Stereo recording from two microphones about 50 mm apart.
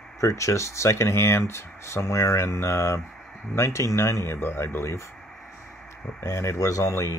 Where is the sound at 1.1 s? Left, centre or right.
Left.